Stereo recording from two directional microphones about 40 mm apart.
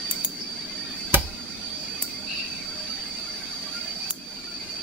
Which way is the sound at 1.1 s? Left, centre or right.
Right.